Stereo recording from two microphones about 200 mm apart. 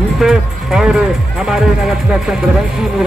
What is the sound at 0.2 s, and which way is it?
Speech, 5° right (ahead or behind).